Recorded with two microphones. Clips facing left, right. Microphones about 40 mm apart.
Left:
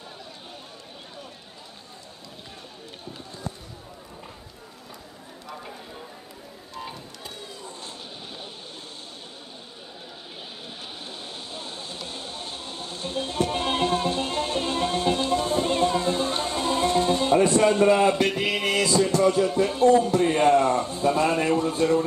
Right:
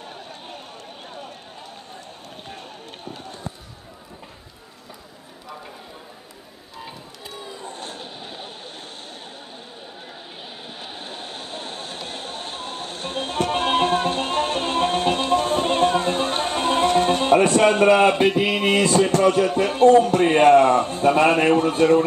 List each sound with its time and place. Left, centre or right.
5.5 s a sound: centre
6.7 s vehicle: centre
11.1 s music: right
18.2 s mantra: centre
18.7 s music: right